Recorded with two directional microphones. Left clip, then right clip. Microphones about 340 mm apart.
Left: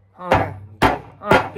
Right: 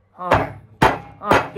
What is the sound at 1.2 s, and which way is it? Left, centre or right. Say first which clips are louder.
Music: left 1 dB; centre.